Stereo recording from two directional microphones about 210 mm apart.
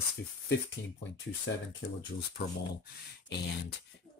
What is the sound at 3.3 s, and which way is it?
Speech, 50° left (ahead or behind).